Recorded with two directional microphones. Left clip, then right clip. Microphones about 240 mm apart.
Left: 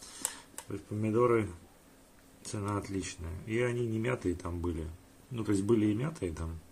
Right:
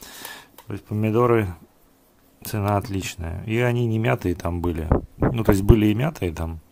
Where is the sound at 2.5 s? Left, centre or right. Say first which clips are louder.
Right 12 dB; right.